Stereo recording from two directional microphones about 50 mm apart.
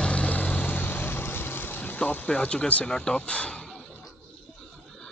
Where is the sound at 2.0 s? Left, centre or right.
Left.